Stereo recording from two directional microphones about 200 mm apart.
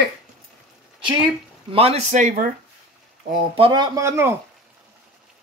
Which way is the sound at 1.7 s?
30° right (ahead or behind).